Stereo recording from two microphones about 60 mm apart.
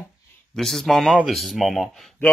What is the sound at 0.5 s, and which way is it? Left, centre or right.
Speech, centre.